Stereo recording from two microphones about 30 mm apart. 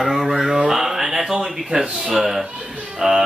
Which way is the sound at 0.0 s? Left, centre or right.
Centre.